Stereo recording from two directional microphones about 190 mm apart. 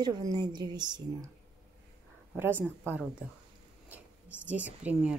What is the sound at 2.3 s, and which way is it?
A woman's voice, 10° right (ahead or behind).